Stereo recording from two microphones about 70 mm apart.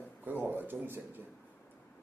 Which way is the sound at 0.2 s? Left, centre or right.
Right.